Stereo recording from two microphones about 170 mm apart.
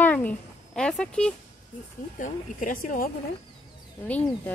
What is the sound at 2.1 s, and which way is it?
Speech, 50° left (ahead or behind).